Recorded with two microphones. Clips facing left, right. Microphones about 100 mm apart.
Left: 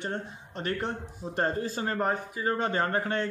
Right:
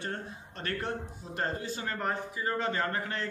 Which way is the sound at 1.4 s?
35° left (ahead or behind).